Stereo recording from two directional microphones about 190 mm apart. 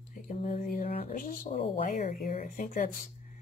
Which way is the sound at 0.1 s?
35° left (ahead or behind).